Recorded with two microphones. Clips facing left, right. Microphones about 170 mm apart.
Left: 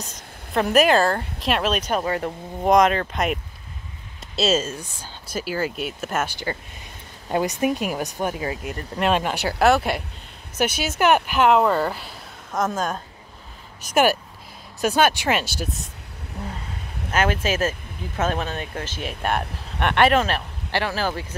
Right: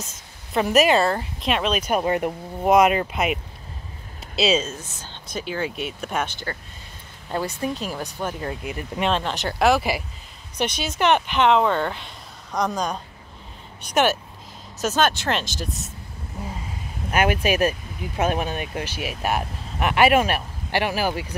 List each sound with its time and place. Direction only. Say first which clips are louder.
0.0 s speech: left 2 dB; 5° right (ahead or behind)
1.9 s speech: right 2 dB; 15° right (ahead or behind)
2.6 s speech: even; 5° right (ahead or behind)
4.4 s speech: even; 5° left (ahead or behind)
7.6 s speech: left 4 dB; 15° left (ahead or behind)
17.1 s speech: right 2 dB; 15° right (ahead or behind)